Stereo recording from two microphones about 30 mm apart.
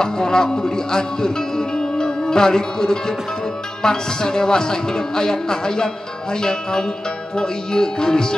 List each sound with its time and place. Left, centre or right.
0.0 s a man's voice: left